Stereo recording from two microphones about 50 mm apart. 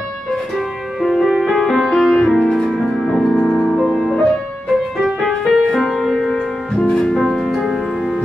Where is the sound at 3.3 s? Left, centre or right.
Left.